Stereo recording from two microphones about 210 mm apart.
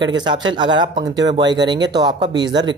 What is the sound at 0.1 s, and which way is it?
Speech, 20° right (ahead or behind).